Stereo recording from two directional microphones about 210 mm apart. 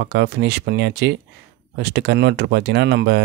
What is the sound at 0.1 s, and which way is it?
Speech, 50° right (ahead or behind).